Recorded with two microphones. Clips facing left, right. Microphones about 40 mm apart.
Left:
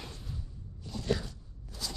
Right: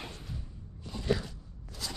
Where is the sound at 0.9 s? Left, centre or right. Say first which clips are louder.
Right 1 dB; centre.